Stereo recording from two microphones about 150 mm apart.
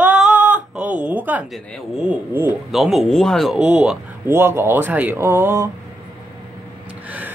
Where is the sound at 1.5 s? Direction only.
Centre (ahead or behind).